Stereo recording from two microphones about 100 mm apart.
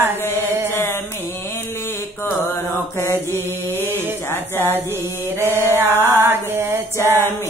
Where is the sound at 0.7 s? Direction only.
25° left (ahead or behind).